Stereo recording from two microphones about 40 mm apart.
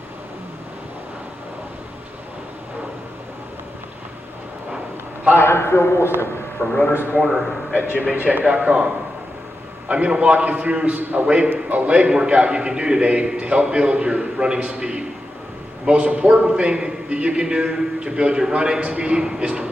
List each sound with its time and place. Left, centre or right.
5.3 s a man's voice: left
6.6 s speech: left
7.2 s a man's voice: centre
7.7 s a man's voice: right
8.7 s a man's voice: right
9.8 s a man's voice: right
11.0 s a man's voice: right
11.2 s a man's voice: right